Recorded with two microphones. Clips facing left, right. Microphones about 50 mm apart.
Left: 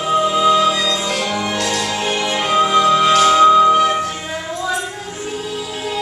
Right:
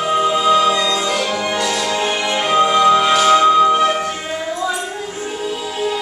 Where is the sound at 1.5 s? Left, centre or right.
Right.